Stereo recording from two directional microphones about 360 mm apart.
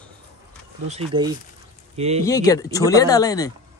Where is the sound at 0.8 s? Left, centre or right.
Centre.